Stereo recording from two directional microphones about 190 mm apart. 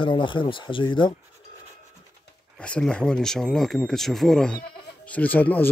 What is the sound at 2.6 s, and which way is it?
Speech, 5° left (ahead or behind).